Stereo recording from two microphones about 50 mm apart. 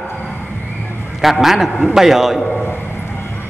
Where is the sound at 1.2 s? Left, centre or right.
Centre.